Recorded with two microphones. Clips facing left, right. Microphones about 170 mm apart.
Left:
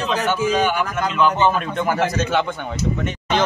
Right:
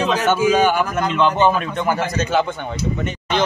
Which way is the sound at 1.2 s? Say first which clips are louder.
Right 1 dB; 25° right (ahead or behind).